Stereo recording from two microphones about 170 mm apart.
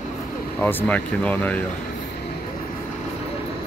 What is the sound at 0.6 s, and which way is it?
Speech, 10° left (ahead or behind).